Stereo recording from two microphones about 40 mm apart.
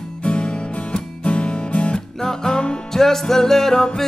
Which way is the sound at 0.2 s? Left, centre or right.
Left.